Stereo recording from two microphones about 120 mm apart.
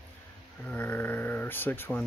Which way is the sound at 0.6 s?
10° left (ahead or behind).